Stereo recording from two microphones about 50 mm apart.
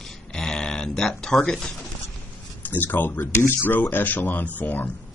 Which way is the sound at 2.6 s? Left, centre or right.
Left.